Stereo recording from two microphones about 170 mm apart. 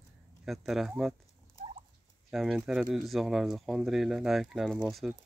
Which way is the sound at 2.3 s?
Centre (ahead or behind).